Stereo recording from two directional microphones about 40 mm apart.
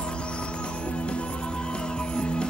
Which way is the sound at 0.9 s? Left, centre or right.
Left.